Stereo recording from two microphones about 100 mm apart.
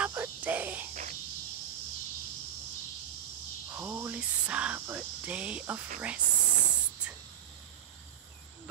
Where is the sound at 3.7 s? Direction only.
25° right (ahead or behind).